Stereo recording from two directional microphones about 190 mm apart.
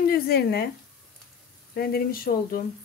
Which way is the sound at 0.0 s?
55° left (ahead or behind).